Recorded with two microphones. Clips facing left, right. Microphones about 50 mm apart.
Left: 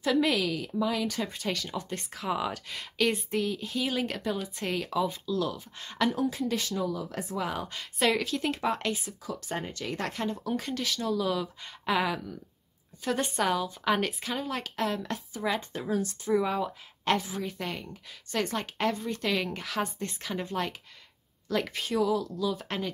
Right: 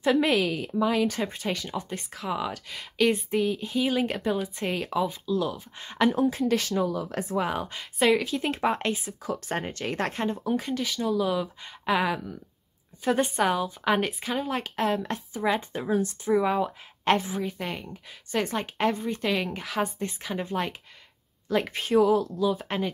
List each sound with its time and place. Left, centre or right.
0.0 s a woman's voice: right
1.4 s a woman's voice: centre
1.9 s speech: centre
3.3 s a woman's voice: centre
6.1 s a woman's voice: right
6.4 s speech: right
6.8 s speech: right
7.3 s speech: right
7.6 s a woman's voice: centre
8.5 s speech: right
9.2 s speech: right
10.4 s a woman's voice: centre; by 22.3 s right
22.3 s speech: right